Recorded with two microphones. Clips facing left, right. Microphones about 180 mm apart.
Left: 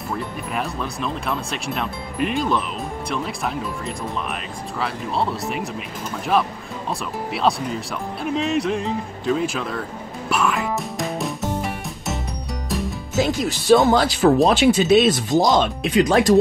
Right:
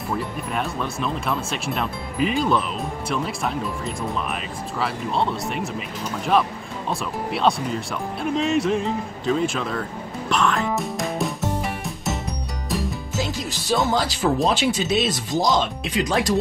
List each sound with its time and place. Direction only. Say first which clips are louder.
0.1 s speech: right 1 dB; centre (ahead or behind)
10.3 s music: even; 5° left (ahead or behind)
13.2 s speech: left 8 dB; 60° left (ahead or behind)